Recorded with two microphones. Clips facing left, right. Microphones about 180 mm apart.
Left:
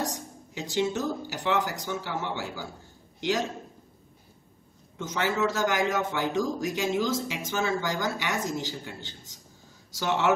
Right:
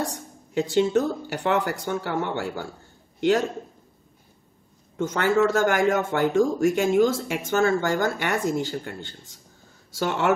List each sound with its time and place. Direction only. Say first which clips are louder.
0.0 s a man's voice: right 2 dB; 60° right (ahead or behind)
4.9 s speech: right 7 dB; 55° right (ahead or behind)